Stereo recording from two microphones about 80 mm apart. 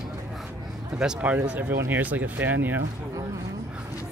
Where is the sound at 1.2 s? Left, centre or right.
Centre.